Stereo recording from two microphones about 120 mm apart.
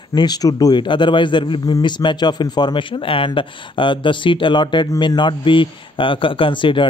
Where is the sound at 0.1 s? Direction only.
35° left (ahead or behind).